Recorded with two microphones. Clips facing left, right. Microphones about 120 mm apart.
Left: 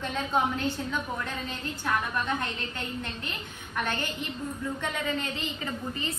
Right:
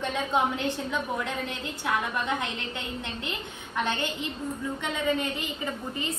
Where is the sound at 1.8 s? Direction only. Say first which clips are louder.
Right 1 dB; 15° right (ahead or behind).